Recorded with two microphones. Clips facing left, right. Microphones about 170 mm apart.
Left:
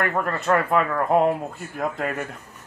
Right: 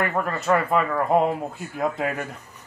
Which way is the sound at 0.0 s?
5° right (ahead or behind).